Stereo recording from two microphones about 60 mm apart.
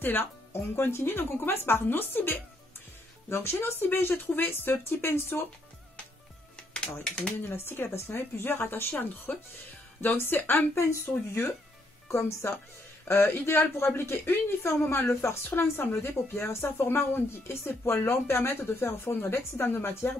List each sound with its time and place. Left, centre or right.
0.0 s speech: left
6.7 s speech: centre
7.4 s speech: left
10.7 s speech: left
12.3 s speech: left
14.2 s speech: left